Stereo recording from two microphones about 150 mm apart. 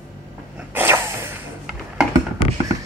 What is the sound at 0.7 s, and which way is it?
Sneeze, 15° right (ahead or behind).